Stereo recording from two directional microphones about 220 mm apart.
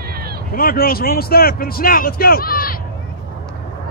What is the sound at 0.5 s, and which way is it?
Speech, 40° left (ahead or behind).